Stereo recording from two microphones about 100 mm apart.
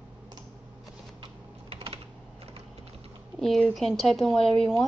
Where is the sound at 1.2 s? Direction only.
70° right (ahead or behind).